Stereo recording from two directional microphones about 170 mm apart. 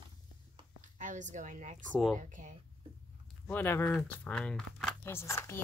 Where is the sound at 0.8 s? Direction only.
45° right (ahead or behind).